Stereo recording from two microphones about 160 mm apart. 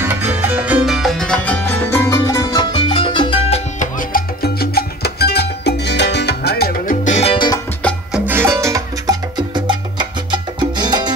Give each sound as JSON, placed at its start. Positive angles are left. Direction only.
{"t": 0.0, "sound": "music", "side_deg": -10}
{"t": 4.0, "sound": "music", "side_deg": 70}
{"t": 7.1, "sound": "music", "side_deg": 45}
{"t": 7.3, "sound": "music", "side_deg": 25}
{"t": 8.1, "sound": "music", "side_deg": -15}